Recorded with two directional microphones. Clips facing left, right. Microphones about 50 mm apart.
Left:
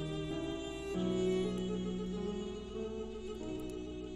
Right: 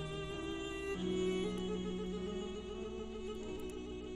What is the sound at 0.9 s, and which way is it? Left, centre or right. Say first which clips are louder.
Music: left 3 dB; right.